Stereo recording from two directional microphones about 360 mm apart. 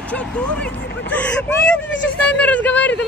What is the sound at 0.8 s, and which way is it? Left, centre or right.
Speech, left.